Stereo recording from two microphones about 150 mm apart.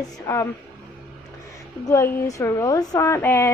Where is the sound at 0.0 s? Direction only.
25° left (ahead or behind).